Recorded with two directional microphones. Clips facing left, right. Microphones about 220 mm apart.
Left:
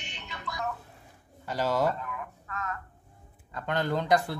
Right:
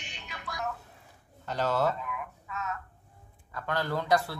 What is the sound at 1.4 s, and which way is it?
Speech, 10° left (ahead or behind).